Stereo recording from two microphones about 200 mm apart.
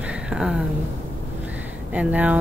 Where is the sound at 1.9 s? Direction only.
5° right (ahead or behind).